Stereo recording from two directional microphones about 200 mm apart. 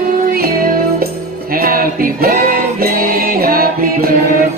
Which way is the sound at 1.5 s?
45° right (ahead or behind).